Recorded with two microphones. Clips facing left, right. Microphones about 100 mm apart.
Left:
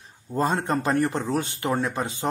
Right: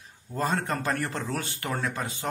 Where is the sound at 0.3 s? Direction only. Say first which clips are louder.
Left 4 dB; 25° left (ahead or behind).